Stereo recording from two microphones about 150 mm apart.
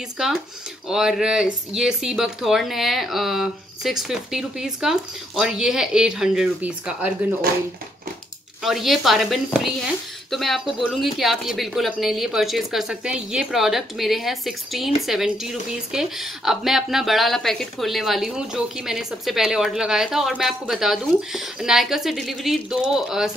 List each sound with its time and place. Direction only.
0.2 s speech: 5° right (ahead or behind)
8.6 s speech: centre (ahead or behind)